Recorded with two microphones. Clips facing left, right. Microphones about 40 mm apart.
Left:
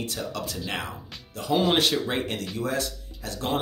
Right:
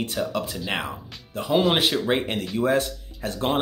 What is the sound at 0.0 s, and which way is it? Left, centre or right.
Speech, right.